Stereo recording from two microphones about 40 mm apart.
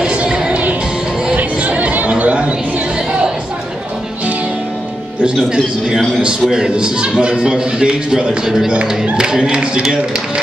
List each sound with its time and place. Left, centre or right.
0.0 s music: right
1.2 s chatter: right
6.5 s a man's voice: right